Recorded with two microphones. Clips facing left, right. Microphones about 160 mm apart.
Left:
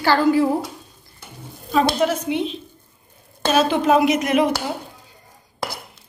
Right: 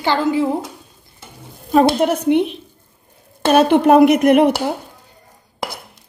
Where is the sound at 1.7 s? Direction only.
60° right (ahead or behind).